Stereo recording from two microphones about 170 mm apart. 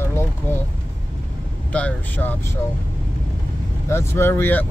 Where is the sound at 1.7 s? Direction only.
10° left (ahead or behind).